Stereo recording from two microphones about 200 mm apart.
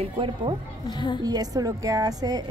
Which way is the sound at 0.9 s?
20° left (ahead or behind).